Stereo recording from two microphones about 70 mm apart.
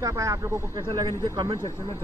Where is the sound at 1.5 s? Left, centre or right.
Left.